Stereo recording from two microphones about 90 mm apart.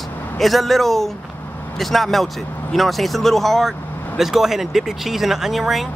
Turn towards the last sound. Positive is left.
turn(degrees=0)  # may be behind; listen again after turning